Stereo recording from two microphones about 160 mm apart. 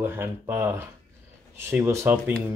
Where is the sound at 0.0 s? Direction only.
15° right (ahead or behind).